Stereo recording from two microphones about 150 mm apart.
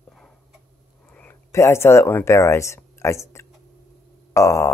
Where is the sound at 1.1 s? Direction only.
10° left (ahead or behind).